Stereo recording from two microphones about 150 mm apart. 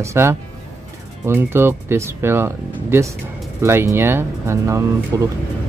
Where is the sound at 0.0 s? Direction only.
20° right (ahead or behind).